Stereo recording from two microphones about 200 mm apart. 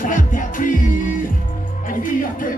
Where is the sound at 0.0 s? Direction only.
40° left (ahead or behind).